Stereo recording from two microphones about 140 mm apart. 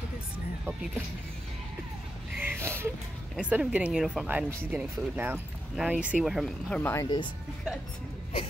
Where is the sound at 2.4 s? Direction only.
15° right (ahead or behind).